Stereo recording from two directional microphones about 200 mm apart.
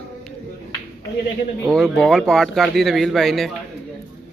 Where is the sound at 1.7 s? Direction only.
5° left (ahead or behind).